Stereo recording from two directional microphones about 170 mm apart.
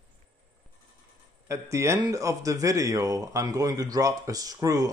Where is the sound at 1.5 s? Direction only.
15° right (ahead or behind).